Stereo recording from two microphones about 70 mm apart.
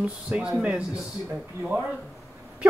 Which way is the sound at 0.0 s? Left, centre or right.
Centre.